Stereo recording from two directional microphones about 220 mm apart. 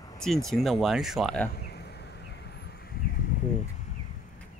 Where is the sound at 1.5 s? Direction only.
45° left (ahead or behind).